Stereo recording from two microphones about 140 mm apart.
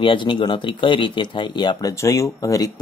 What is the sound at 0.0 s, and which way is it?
Speech, 35° left (ahead or behind).